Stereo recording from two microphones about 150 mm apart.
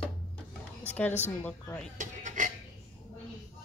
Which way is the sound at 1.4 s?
10° left (ahead or behind).